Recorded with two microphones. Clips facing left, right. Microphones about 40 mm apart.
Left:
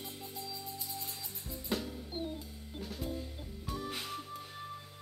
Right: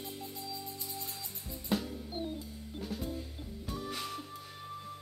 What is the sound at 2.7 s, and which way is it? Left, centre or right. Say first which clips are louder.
Drum kit: right 1 dB; centre.